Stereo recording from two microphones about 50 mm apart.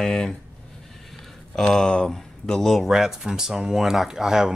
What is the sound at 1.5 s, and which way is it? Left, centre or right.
Speech, centre.